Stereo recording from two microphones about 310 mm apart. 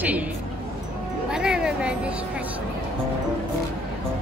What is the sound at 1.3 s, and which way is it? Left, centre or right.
Music, centre.